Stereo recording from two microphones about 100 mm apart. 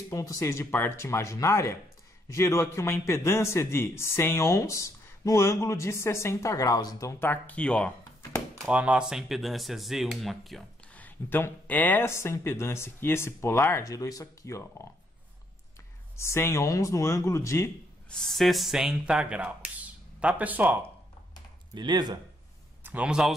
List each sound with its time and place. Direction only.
0.1 s a man's voice: 35° left (ahead or behind)
7.2 s speech: 20° left (ahead or behind)
8.6 s speech: 10° right (ahead or behind)
11.0 s a man's voice: 20° left (ahead or behind)
13.8 s speech: 35° left (ahead or behind)
16.2 s a man's voice: 25° left (ahead or behind)
18.1 s speech: 5° left (ahead or behind); by 20.8 s 15° right (ahead or behind)
21.7 s speech: 45° right (ahead or behind)
22.8 s a man's voice: 10° right (ahead or behind)